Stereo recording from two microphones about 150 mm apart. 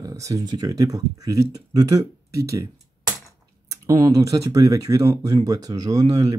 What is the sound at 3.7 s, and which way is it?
Speech, 20° right (ahead or behind).